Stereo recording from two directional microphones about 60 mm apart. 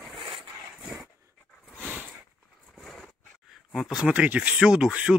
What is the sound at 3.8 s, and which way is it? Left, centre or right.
Speech, centre.